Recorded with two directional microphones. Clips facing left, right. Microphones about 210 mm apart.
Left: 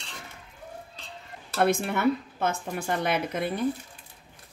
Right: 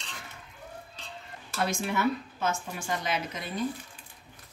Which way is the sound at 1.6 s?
55° left (ahead or behind).